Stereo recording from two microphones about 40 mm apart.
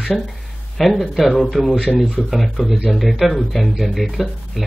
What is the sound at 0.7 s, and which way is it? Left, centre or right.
Speech, centre.